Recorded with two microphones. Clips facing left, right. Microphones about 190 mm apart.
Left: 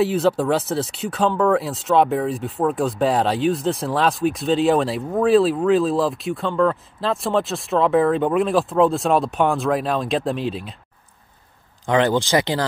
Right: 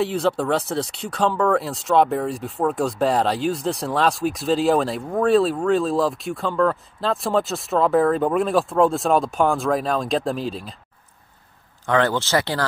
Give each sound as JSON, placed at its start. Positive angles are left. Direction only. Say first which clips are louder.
{"t": 0.0, "sound": "speech", "louder": "left 3 dB", "side_deg": 0}
{"t": 11.9, "sound": "speech", "louder": "left 2 dB", "side_deg": 15}